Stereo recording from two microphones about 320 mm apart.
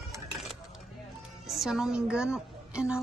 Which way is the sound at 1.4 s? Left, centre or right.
Centre.